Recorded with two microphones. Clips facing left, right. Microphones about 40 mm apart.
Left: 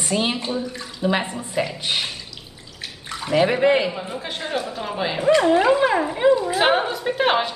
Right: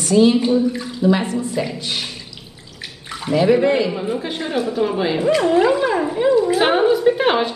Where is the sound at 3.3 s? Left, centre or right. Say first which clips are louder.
Right 2 dB; centre.